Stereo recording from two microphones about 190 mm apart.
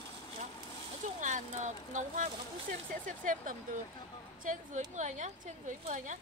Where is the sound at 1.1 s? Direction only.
40° right (ahead or behind).